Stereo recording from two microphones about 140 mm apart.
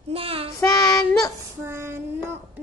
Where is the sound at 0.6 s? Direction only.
25° left (ahead or behind).